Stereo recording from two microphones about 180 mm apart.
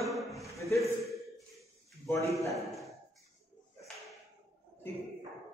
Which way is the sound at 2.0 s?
15° left (ahead or behind).